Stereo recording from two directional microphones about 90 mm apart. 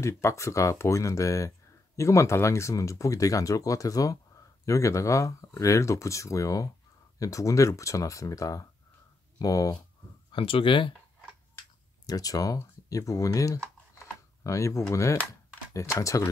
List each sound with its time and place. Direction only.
0.0 s speech: 35° left (ahead or behind)
10.3 s speech: 80° left
12.1 s speech: 40° left (ahead or behind)